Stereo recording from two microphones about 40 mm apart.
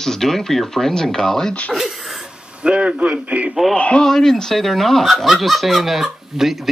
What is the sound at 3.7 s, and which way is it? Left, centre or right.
Speech, left.